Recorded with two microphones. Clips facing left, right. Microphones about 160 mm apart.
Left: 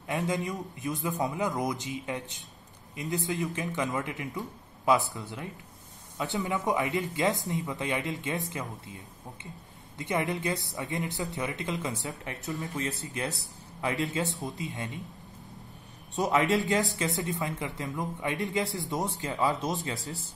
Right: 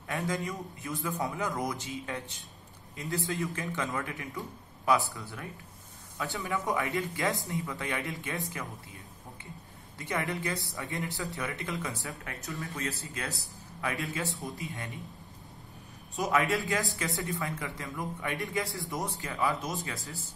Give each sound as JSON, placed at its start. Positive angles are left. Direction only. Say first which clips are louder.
{"t": 0.0, "sound": "speech", "louder": "left 3 dB", "side_deg": 20}
{"t": 16.3, "sound": "speech", "louder": "left 3 dB", "side_deg": 20}